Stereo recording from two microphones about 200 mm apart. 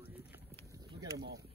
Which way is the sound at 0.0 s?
10° right (ahead or behind).